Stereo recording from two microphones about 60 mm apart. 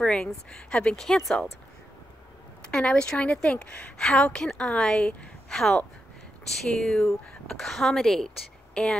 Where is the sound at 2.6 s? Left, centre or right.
Centre.